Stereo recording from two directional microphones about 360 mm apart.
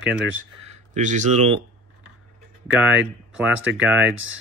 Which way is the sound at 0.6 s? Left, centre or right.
Centre.